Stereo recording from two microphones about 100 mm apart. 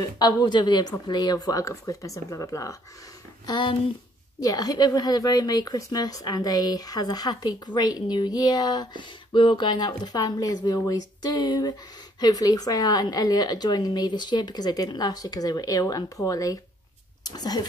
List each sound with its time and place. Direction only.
0.0 s a woman's voice: 40° left (ahead or behind)
3.4 s a woman's voice: 45° left (ahead or behind)